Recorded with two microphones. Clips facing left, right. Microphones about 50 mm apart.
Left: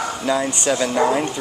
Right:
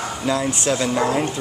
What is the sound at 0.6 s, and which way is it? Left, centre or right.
Speech, centre.